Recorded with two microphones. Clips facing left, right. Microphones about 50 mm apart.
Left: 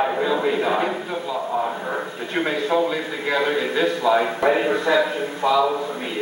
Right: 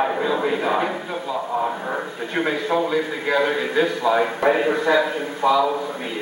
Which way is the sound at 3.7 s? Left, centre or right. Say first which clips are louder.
Even; right.